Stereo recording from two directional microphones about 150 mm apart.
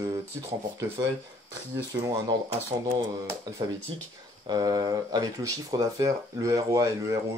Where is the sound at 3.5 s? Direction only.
25° right (ahead or behind).